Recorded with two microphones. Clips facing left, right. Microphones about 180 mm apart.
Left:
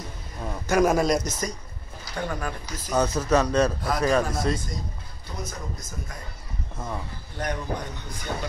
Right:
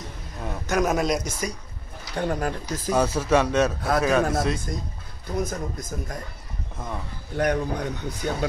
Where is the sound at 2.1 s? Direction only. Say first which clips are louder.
Right 4 dB; 35° right (ahead or behind).